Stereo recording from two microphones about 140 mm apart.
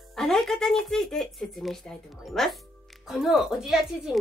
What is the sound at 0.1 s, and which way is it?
Speech, centre (ahead or behind).